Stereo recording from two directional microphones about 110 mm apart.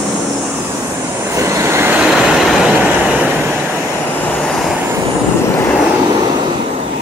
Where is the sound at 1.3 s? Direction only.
25° right (ahead or behind).